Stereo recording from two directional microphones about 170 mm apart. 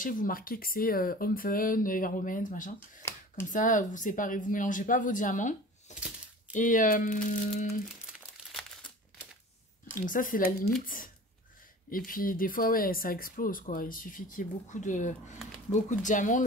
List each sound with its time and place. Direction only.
0.0 s speech: 55° left (ahead or behind)
3.0 s a sound: 15° left (ahead or behind)
3.4 s speech: 50° left (ahead or behind)
8.5 s crumpling: centre (ahead or behind)
9.9 s speech: 50° left (ahead or behind)
11.9 s speech: 55° left (ahead or behind)